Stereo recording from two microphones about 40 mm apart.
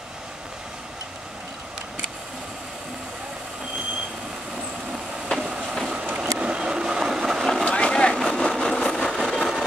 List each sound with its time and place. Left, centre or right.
5.4 s train: right
6.1 s boat: right; by 7.3 s centre
7.3 s vehicle: centre
7.6 s vehicle: left
8.4 s a sound: centre